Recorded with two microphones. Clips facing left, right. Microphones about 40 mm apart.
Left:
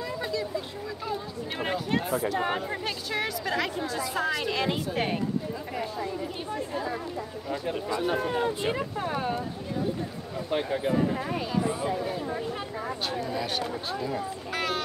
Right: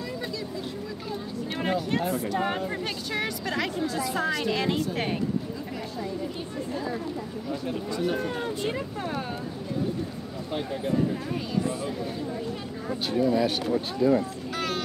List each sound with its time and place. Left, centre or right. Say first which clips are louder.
1.6 s speech: right 2 dB; centre
6.7 s speech: right 1 dB; centre
10.5 s speech: left 2 dB; left
13.2 s speech: right 11 dB; centre
14.5 s a sound: left 1 dB; centre